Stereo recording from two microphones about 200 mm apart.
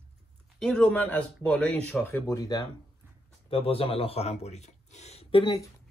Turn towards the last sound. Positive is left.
turn(degrees=25)  # may be behind; listen again after turning